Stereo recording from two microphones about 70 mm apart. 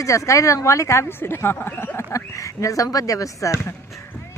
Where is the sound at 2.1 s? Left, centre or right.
Left.